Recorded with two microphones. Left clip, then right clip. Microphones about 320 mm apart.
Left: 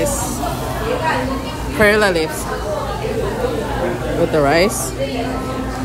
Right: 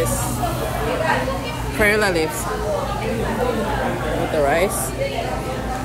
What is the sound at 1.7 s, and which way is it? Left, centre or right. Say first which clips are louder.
Speech: left 4 dB; centre.